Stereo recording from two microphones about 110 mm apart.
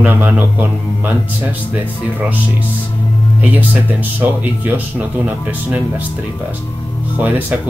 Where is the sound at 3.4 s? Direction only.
15° right (ahead or behind).